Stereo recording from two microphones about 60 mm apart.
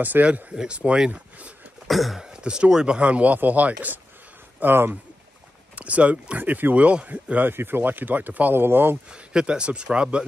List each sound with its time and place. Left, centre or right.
0.0 s speech: right
1.9 s a sound: centre
2.2 s speech: centre; by 4.9 s right
5.8 s speech: right
7.5 s speech: right
9.1 s speech: centre